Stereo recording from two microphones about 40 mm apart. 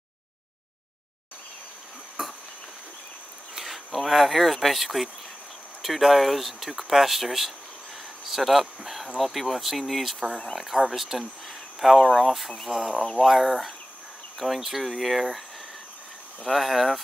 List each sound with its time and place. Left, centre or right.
2.2 s insect: centre
3.5 s speech: centre
16.4 s speech: centre